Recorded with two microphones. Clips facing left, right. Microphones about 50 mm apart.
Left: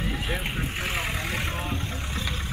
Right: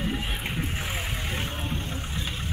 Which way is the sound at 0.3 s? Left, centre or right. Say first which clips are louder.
Left 2 dB; left.